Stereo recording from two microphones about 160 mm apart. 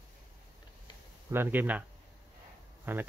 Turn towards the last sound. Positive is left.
turn(degrees=-10)  # may be behind; listen again after turning